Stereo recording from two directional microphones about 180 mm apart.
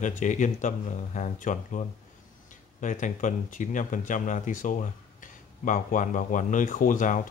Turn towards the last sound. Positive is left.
turn(degrees=45)  # may be behind; listen again after turning